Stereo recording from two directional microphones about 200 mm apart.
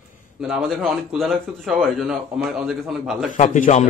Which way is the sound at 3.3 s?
40° left (ahead or behind).